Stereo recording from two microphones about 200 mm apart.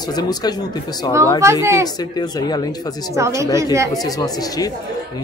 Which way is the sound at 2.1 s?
20° left (ahead or behind).